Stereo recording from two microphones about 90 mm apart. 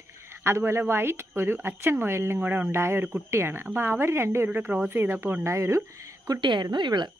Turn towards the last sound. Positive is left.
turn(degrees=-55)  # may be behind; listen again after turning